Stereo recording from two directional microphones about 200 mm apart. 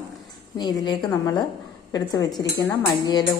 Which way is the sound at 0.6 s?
20° left (ahead or behind).